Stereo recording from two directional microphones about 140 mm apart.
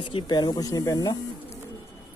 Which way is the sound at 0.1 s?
30° left (ahead or behind).